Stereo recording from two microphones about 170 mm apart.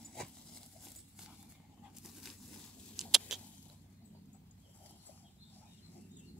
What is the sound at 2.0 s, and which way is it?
Vehicle, centre (ahead or behind).